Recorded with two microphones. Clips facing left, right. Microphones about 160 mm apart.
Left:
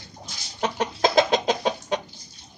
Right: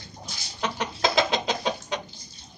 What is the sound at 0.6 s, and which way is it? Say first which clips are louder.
Chicken: left 4 dB; 45° left (ahead or behind).